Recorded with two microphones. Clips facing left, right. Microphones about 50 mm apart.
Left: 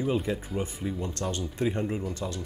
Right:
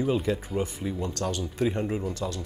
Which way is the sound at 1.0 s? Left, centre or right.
Left.